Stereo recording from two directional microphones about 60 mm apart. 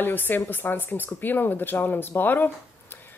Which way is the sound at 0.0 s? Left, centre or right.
Left.